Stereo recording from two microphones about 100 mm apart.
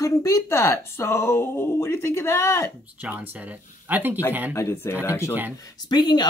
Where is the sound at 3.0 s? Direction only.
20° right (ahead or behind).